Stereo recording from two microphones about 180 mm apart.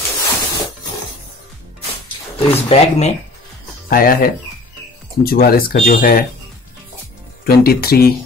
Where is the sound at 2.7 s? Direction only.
40° left (ahead or behind).